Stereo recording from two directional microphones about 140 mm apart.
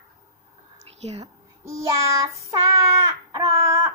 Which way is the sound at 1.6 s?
20° right (ahead or behind).